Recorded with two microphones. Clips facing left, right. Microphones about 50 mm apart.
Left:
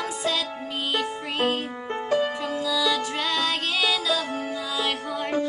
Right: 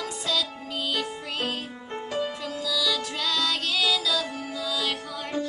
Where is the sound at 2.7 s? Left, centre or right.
Left.